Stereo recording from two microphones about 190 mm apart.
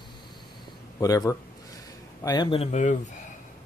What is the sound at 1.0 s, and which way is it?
Speech, 20° left (ahead or behind).